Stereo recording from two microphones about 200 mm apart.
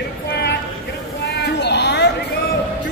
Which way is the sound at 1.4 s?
55° left (ahead or behind).